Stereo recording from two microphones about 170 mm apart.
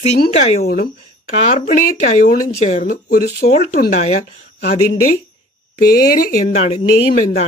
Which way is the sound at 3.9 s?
40° left (ahead or behind).